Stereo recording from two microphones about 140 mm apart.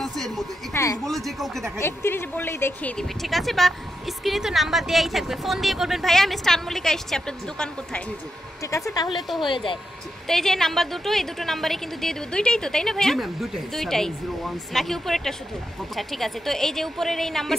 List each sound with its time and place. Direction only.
0.0 s a sound: centre (ahead or behind)
1.0 s a woman's voice: centre (ahead or behind)
1.8 s a woman's voice: 15° left (ahead or behind)
3.0 s a woman's voice: centre (ahead or behind)
8.6 s speech: 20° left (ahead or behind)
9.4 s speech: 35° left (ahead or behind)
10.2 s a woman's voice: 5° left (ahead or behind)